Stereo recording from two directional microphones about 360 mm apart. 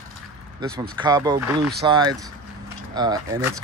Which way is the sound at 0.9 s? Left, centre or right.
Centre.